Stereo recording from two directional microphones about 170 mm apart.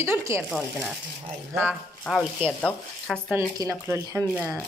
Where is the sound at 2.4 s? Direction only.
5° left (ahead or behind).